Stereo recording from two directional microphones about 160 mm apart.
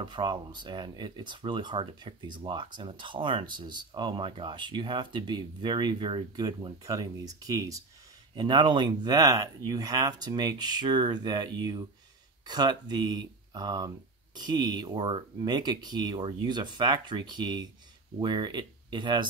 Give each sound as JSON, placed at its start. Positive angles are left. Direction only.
{"t": 0.0, "sound": "speech", "side_deg": -30}